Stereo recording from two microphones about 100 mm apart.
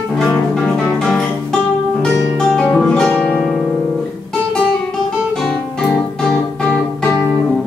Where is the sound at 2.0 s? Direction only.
5° left (ahead or behind).